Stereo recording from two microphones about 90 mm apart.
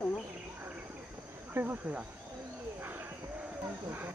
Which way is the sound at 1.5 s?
20° right (ahead or behind).